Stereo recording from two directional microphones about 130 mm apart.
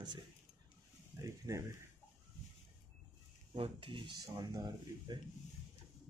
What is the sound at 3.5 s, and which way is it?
Speech, 45° right (ahead or behind).